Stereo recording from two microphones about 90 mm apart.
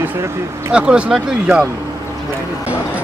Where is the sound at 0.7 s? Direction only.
10° right (ahead or behind).